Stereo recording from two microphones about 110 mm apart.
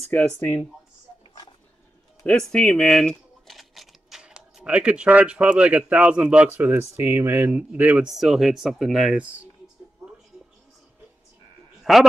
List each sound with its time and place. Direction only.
0.1 s speech: 20° left (ahead or behind)
2.2 s speech: 5° left (ahead or behind); by 8.1 s 15° right (ahead or behind)
8.2 s speech: 5° right (ahead or behind)
11.8 s a man's voice: centre (ahead or behind)